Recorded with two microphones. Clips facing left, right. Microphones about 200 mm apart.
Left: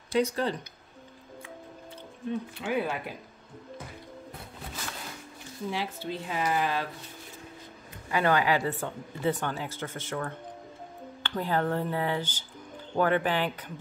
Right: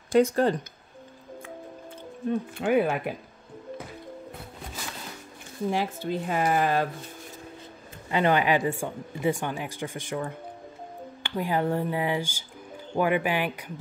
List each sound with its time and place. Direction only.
0.1 s speech: 50° right (ahead or behind)
2.5 s speech: 50° right (ahead or behind)
5.7 s speech: 50° right (ahead or behind)
8.1 s speech: 20° right (ahead or behind)